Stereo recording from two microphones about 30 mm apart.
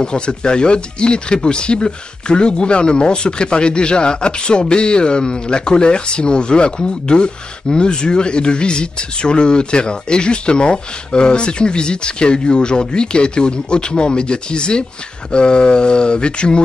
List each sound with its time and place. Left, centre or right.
0.0 s speech: left